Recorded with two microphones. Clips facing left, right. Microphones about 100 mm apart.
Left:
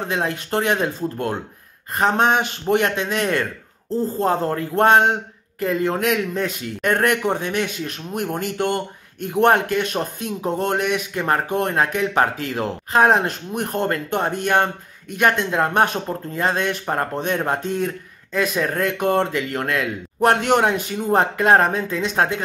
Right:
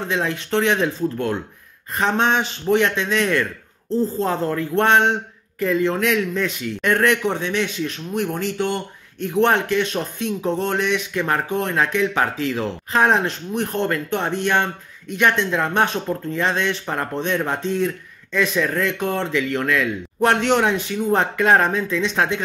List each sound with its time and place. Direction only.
0.1 s speech: 40° left (ahead or behind)
2.0 s speech: 45° left (ahead or behind)
3.9 s speech: 15° left (ahead or behind)
4.2 s speech: 50° left (ahead or behind)
11.4 s speech: 50° left (ahead or behind)
16.8 s speech: 35° left (ahead or behind)
17.5 s speech: 50° left (ahead or behind)